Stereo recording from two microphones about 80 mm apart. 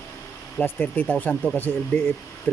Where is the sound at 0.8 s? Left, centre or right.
Left.